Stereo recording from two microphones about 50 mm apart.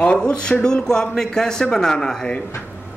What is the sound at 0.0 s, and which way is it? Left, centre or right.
A man's voice, centre.